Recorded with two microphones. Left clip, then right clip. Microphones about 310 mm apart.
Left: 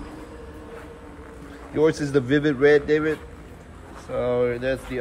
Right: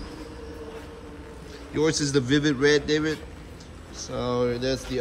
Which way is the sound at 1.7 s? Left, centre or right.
Centre.